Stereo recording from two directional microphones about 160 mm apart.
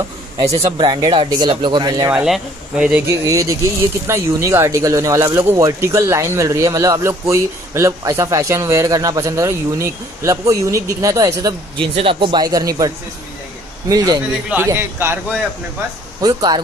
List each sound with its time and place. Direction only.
0.6 s speech: 30° right (ahead or behind)
2.1 s speech: 5° right (ahead or behind)
3.1 s a man's voice: 20° right (ahead or behind)
16.2 s speech: 25° right (ahead or behind)